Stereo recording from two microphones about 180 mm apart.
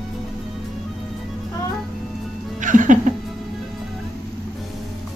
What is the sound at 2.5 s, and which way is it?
Music, 45° right (ahead or behind).